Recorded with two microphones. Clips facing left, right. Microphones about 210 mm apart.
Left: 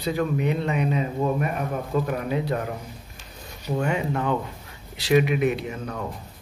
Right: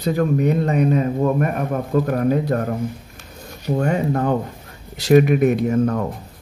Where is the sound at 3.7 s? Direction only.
40° right (ahead or behind).